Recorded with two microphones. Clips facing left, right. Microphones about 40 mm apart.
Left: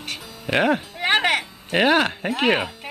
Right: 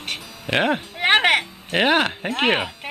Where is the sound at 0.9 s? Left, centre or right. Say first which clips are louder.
Right 3 dB; right.